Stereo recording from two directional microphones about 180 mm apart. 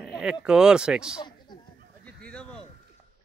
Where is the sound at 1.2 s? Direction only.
25° left (ahead or behind).